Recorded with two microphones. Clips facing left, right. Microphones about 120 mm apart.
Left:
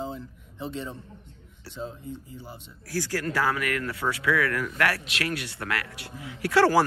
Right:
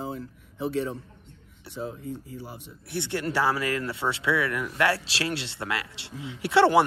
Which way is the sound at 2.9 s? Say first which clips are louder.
Even; 25° right (ahead or behind).